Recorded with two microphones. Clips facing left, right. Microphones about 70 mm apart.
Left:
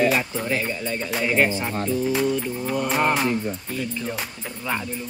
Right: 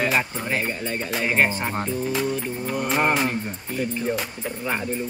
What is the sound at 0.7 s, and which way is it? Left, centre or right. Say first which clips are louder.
Speech: left 1 dB; right.